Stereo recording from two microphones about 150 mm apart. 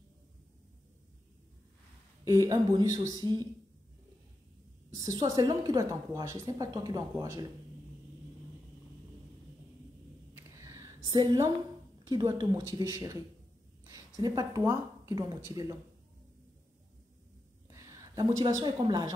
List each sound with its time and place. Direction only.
2.2 s a woman's voice: 25° right (ahead or behind)
4.9 s a woman's voice: 25° right (ahead or behind)
10.3 s a sound: 20° right (ahead or behind)
11.1 s a woman's voice: 30° right (ahead or behind)
14.2 s a woman's voice: 25° right (ahead or behind)
17.6 s a sound: 20° right (ahead or behind)
18.6 s a woman's voice: 30° right (ahead or behind)